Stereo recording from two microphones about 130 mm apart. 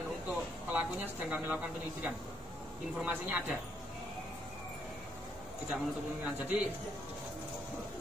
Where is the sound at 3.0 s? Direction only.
10° right (ahead or behind).